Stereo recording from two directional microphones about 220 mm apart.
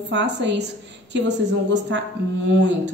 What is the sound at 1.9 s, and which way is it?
Speech, 55° right (ahead or behind).